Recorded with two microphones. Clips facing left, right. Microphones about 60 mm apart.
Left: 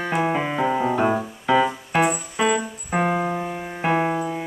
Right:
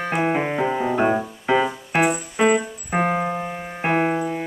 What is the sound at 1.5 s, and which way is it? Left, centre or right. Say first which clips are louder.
Keyboard: left 1 dB; right.